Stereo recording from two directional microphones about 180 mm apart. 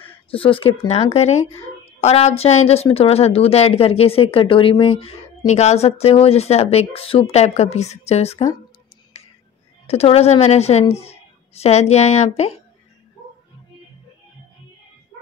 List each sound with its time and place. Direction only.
0.3 s speech: 30° left (ahead or behind)
9.1 s a sound: 35° left (ahead or behind)
9.8 s speech: 35° left (ahead or behind)